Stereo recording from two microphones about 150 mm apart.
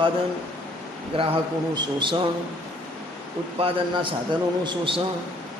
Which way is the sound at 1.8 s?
30° right (ahead or behind).